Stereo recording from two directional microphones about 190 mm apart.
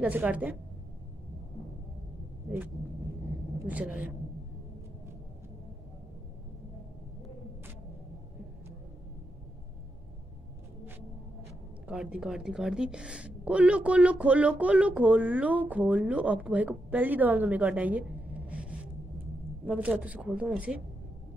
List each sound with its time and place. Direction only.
0.0 s a woman's voice: 10° right (ahead or behind)
3.6 s a woman's voice: 10° right (ahead or behind)
11.9 s a woman's voice: 5° right (ahead or behind)